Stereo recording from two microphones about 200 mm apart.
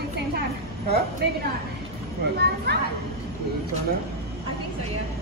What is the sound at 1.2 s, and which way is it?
A woman's voice, 55° right (ahead or behind).